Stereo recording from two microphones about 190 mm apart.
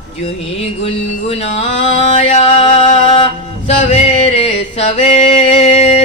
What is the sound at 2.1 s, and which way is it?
Music, 35° left (ahead or behind).